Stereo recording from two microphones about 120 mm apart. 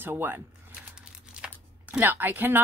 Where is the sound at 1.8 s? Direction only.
15° right (ahead or behind).